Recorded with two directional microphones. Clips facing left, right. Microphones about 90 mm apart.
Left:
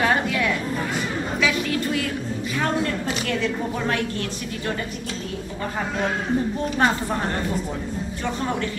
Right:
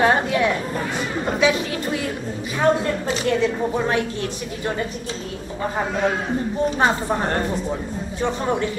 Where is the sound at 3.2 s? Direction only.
20° right (ahead or behind).